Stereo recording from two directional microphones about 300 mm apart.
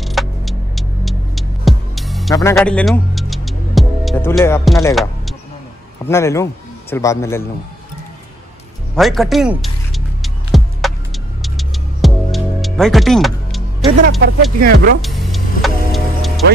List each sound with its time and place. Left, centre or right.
0.0 s throbbing: centre
2.5 s a man's voice: centre
8.9 s music: centre
14.0 s speech: right
15.0 s music: centre